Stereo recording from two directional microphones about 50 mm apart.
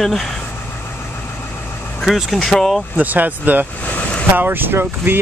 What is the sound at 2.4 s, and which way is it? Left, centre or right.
Speech, centre.